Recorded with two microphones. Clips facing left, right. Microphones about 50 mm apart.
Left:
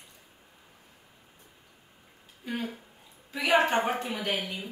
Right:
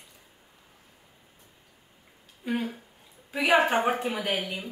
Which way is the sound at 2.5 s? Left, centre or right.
Centre.